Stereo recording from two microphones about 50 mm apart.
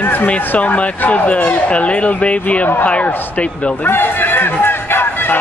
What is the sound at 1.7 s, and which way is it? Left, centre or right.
Speech, left.